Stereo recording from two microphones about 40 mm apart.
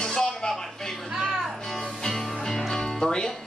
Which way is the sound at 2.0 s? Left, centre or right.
Centre.